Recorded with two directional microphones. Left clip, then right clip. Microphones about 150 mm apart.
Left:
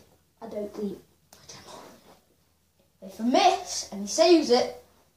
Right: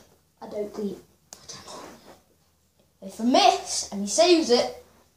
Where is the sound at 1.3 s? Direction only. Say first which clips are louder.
Right 7 dB; 50° right (ahead or behind).